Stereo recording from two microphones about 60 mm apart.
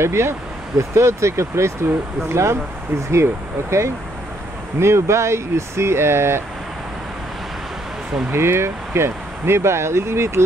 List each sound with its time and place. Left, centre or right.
0.0 s speech: right
4.7 s speech: right
8.3 s speech: right